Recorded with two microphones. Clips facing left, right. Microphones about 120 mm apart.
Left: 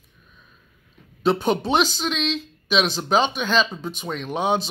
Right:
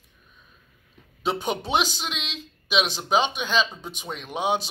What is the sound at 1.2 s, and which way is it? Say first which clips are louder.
Speech: left 6 dB; 15° right (ahead or behind).